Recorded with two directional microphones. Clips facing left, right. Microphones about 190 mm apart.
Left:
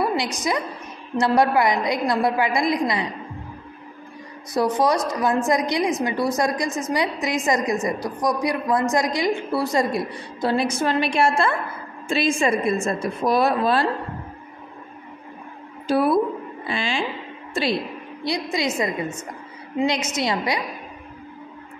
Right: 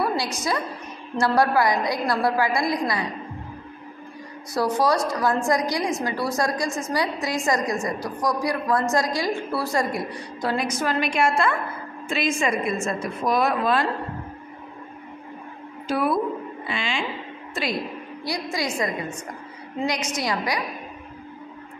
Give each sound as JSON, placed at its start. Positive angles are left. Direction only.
{"t": 0.0, "sound": "a woman's voice", "side_deg": 20}
{"t": 4.6, "sound": "a woman's voice", "side_deg": 20}
{"t": 15.9, "sound": "a woman's voice", "side_deg": 30}
{"t": 18.2, "sound": "a woman's voice", "side_deg": 20}